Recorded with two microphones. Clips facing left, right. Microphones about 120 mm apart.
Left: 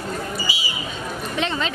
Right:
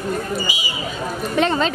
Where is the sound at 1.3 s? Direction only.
45° right (ahead or behind).